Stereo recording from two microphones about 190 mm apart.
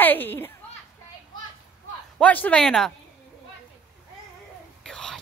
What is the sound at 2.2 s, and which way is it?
Speech, 5° left (ahead or behind).